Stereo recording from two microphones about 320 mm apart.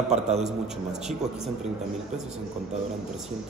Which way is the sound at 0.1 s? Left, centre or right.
Right.